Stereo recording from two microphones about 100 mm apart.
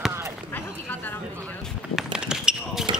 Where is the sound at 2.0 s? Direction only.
10° right (ahead or behind).